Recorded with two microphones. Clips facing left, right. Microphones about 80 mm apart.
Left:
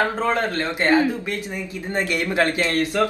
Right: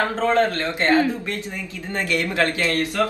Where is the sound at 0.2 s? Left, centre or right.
Centre.